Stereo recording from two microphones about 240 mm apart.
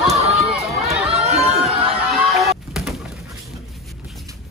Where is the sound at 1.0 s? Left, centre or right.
Right.